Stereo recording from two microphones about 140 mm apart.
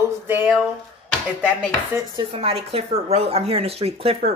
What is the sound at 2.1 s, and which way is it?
Speech, 45° right (ahead or behind).